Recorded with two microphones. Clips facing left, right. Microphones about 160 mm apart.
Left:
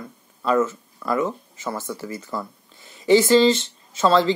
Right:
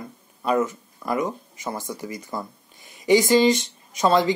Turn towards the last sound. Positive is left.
turn(degrees=-15)  # may be behind; listen again after turning